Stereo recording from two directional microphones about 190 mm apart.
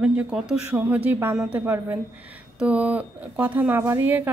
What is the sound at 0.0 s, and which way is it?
Speech, 5° right (ahead or behind).